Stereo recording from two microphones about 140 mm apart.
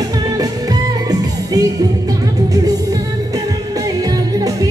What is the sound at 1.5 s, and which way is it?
Music, 25° right (ahead or behind).